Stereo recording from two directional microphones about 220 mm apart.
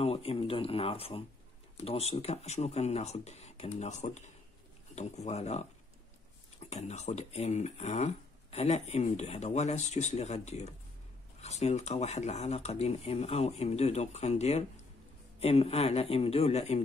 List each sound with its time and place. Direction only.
0.0 s speech: 25° left (ahead or behind)
6.7 s speech: 30° left (ahead or behind)